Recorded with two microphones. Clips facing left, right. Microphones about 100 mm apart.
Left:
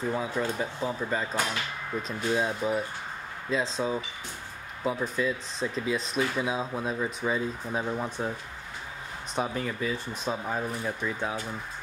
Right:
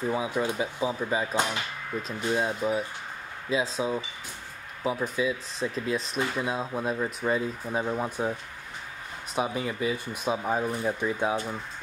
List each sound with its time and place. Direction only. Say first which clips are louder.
0.1 s speech: right 2 dB; 10° right (ahead or behind)
1.3 s speech: right 2 dB; 20° right (ahead or behind)
2.0 s speech: even; centre (ahead or behind); by 11.3 s 20° right (ahead or behind)